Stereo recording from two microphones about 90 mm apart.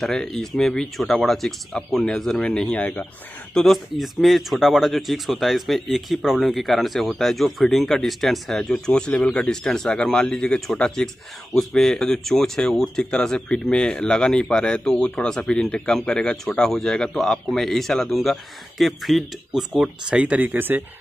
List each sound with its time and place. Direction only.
0.0 s speech: 5° left (ahead or behind)
3.5 s speech: centre (ahead or behind)
19.7 s speech: 10° right (ahead or behind)